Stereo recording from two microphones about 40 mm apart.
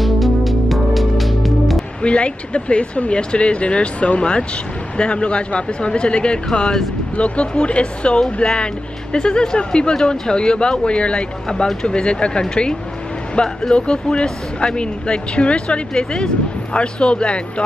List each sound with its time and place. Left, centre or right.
0.0 s music: centre
2.0 s speech: left
4.2 s speech: left
11.4 s speech: centre